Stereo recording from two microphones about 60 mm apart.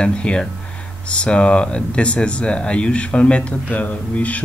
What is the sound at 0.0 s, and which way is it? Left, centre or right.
Speech, centre.